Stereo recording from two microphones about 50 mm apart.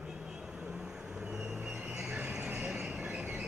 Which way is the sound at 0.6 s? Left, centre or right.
Right.